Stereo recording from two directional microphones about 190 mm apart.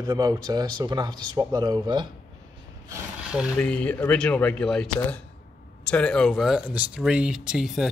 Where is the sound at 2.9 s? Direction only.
5° right (ahead or behind).